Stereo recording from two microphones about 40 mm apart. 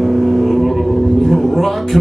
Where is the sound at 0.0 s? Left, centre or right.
Centre.